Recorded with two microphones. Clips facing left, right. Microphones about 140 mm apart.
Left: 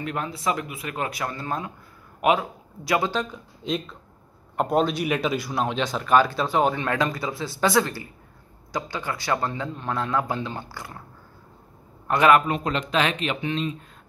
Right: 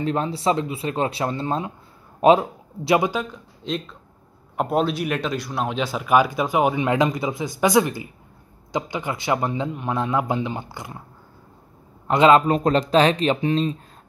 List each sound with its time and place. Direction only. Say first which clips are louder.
0.0 s speech: right 6 dB; 30° right (ahead or behind)
3.1 s speech: right 1 dB; 5° right (ahead or behind)
12.1 s speech: right 3 dB; 25° right (ahead or behind)
12.4 s speech: right 7 dB; 40° right (ahead or behind)